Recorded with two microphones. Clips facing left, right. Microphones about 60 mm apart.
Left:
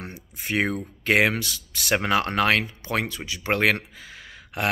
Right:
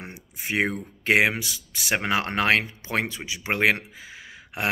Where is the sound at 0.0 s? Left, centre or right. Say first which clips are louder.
Even; centre.